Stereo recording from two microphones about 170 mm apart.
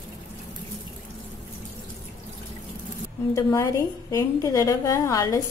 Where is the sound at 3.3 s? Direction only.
15° left (ahead or behind).